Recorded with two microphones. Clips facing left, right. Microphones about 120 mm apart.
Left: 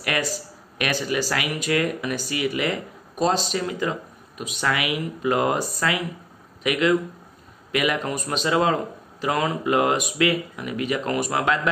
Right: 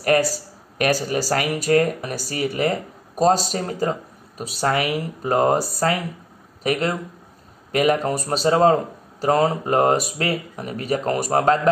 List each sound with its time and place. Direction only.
0.0 s a man's voice: 40° right (ahead or behind)